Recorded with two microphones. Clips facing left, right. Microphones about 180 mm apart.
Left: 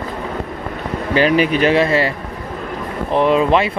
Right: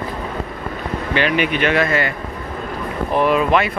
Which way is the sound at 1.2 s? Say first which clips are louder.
Left 5 dB; 35° left (ahead or behind).